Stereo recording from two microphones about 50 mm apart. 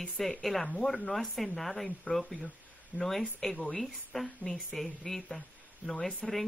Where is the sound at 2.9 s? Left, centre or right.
Right.